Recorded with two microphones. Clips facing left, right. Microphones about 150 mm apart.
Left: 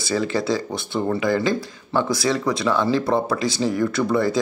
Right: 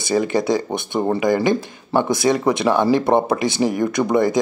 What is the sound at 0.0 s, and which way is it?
Speech, 20° right (ahead or behind).